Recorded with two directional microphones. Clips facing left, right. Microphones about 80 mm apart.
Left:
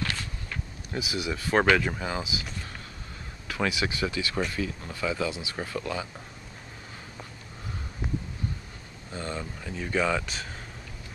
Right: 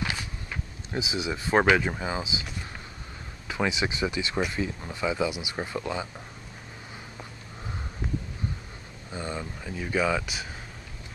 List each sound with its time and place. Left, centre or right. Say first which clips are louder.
0.0 s speech: right 1 dB; centre
3.4 s speech: right 1 dB; right
9.1 s speech: right 1 dB; centre